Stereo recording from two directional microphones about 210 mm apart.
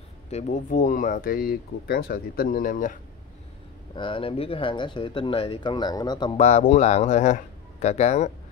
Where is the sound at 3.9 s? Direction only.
25° left (ahead or behind).